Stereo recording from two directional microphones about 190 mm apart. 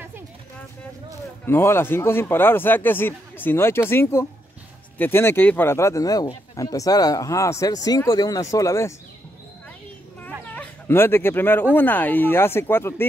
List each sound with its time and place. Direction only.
1.4 s speech: 15° left (ahead or behind)
10.2 s a sound: 10° left (ahead or behind)
11.7 s speech: 10° left (ahead or behind)